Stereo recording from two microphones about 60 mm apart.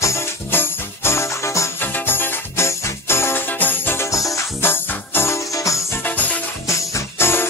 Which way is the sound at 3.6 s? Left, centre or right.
Left.